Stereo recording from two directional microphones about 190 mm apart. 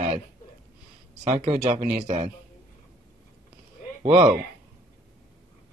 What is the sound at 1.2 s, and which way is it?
Speech, 30° right (ahead or behind).